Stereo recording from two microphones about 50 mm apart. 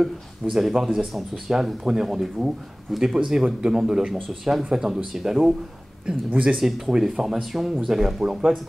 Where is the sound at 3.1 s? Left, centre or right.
Centre.